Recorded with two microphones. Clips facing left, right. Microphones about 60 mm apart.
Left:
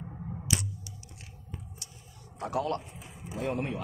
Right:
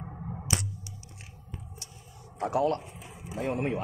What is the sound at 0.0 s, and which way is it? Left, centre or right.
Finger snapping, right.